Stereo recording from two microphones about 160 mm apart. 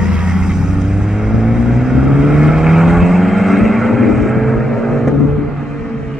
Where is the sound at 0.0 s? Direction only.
5° right (ahead or behind).